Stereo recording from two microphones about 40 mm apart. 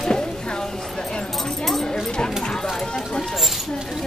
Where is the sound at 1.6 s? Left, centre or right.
Centre.